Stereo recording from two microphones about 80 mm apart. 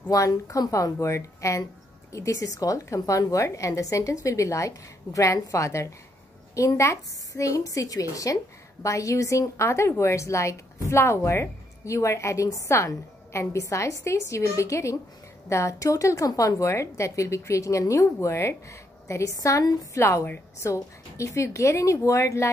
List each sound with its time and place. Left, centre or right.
0.1 s a woman's voice: left
20.0 s a woman's voice: left